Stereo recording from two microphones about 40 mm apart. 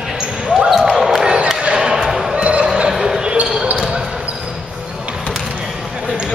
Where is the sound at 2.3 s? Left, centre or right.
Right.